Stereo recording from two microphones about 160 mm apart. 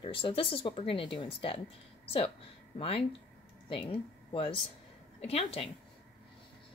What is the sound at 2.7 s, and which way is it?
Speech, 35° left (ahead or behind).